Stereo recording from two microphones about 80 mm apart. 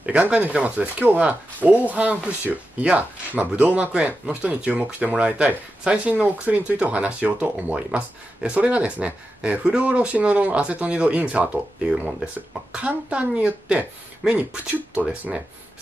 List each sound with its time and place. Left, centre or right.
0.0 s speech: centre